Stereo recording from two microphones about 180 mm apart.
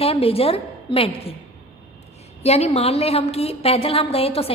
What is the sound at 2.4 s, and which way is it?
A woman's voice, 35° left (ahead or behind).